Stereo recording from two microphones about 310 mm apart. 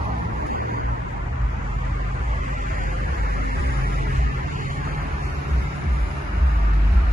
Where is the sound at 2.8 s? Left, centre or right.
Right.